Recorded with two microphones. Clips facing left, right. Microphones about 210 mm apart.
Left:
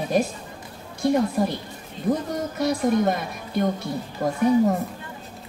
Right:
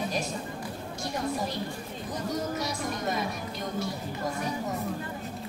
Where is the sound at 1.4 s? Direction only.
55° left (ahead or behind).